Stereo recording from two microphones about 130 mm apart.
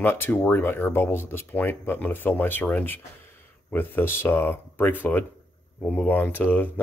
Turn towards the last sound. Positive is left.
turn(degrees=15)  # may be behind; listen again after turning